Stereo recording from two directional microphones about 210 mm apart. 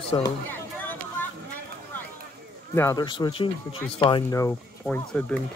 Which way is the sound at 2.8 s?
15° left (ahead or behind).